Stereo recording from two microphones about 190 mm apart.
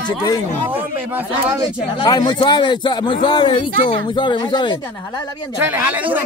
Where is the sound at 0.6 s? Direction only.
10° right (ahead or behind).